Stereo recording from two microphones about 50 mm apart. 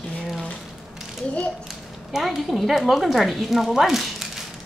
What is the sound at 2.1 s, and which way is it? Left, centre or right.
Speech, centre.